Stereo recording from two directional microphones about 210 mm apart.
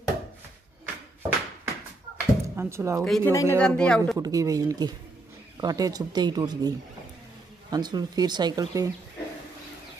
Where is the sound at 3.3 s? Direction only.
10° left (ahead or behind).